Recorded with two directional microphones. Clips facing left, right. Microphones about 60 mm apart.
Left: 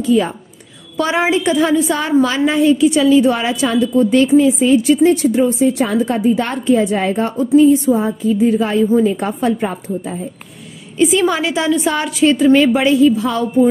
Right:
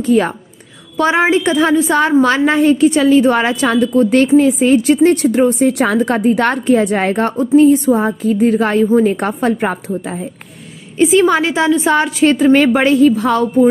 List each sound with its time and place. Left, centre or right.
0.0 s a woman's voice: right
0.9 s a woman's voice: right
11.0 s a woman's voice: right
12.5 s a woman's voice: right